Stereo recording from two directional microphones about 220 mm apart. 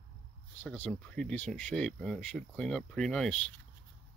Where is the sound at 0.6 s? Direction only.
5° left (ahead or behind).